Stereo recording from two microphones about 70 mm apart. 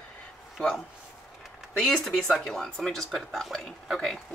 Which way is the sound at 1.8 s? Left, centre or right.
Centre.